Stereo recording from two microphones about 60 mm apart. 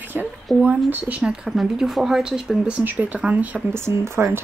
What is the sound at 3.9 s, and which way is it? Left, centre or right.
Speech, right.